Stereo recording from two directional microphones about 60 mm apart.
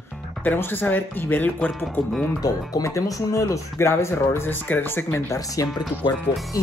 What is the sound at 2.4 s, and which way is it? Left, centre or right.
Speech, left.